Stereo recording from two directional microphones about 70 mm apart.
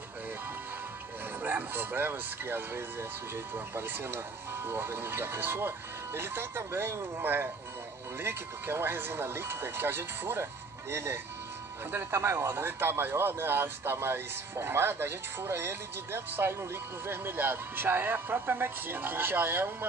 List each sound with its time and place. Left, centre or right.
1.4 s speech: right